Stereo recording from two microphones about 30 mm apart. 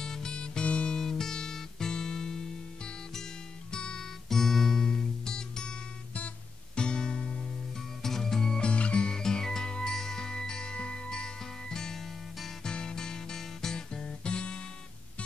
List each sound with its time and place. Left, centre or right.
0.0 s music: left
0.8 s music: centre
3.7 s music: left
4.3 s music: centre; by 7.4 s left
8.0 s music: centre
8.5 s music: left
9.1 s music: left
13.7 s guitar: left